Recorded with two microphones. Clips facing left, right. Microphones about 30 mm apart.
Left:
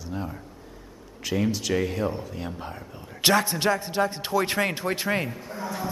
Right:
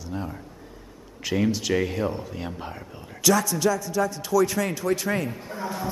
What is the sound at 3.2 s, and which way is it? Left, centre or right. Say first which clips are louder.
A man's voice: right 1 dB; left.